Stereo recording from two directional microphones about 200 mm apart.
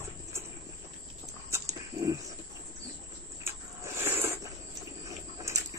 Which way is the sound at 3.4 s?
10° right (ahead or behind).